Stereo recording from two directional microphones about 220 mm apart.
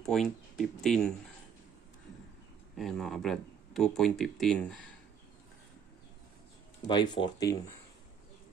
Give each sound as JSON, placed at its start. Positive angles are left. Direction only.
{"t": 0.0, "sound": "speech", "side_deg": 0}
{"t": 2.7, "sound": "speech", "side_deg": 0}
{"t": 6.9, "sound": "speech", "side_deg": 20}